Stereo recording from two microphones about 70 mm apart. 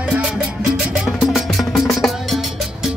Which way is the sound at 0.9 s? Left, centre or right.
Centre.